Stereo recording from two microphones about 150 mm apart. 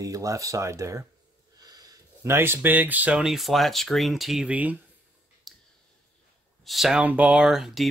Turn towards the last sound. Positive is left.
turn(degrees=-5)  # may be behind; listen again after turning